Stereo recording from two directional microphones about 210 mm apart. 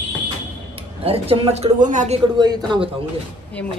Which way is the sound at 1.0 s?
30° right (ahead or behind).